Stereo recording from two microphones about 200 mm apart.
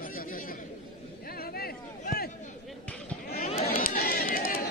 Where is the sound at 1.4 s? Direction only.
50° left (ahead or behind).